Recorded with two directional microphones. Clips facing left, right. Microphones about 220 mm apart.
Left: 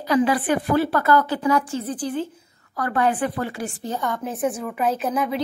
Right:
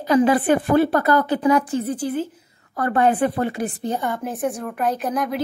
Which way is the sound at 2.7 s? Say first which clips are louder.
Right 3 dB; 25° right (ahead or behind).